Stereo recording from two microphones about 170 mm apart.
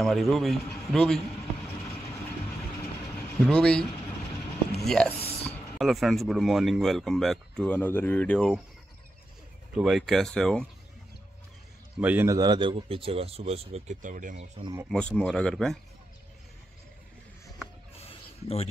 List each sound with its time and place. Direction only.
0.0 s speech: centre (ahead or behind)
3.3 s speech: 5° left (ahead or behind)
4.8 s speech: 5° left (ahead or behind)
9.8 s speech: centre (ahead or behind)
12.0 s a man's voice: 10° right (ahead or behind)
12.3 s speech: 25° right (ahead or behind); by 14.4 s 50° right (ahead or behind)
14.6 s speech: 20° right (ahead or behind)
14.9 s speech: 5° left (ahead or behind)
17.9 s a sound: 35° left (ahead or behind)